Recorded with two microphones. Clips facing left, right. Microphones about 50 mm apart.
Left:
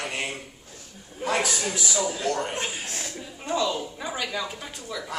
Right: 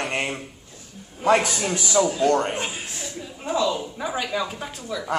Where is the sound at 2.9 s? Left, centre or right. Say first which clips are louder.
Even; left.